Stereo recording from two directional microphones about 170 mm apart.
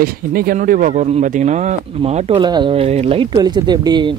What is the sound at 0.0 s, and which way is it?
Speech, 60° right (ahead or behind).